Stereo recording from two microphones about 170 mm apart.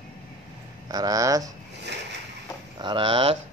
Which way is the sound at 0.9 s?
20° right (ahead or behind).